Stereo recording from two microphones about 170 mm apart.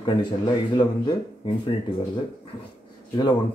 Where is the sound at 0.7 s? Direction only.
25° left (ahead or behind).